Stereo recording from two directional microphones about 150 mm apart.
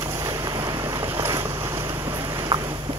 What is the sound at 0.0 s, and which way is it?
Boat, 20° right (ahead or behind).